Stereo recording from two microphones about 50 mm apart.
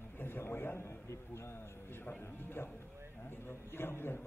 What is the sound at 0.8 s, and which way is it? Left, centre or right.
A man's voice, left.